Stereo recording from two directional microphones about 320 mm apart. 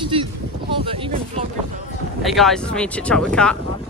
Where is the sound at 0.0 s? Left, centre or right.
Centre.